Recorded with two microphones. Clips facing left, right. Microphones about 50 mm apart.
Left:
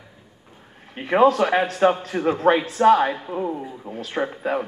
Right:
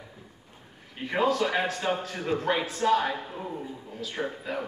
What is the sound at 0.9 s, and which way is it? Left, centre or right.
Speech, left.